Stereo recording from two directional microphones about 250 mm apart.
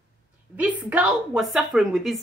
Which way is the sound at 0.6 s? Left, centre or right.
Centre.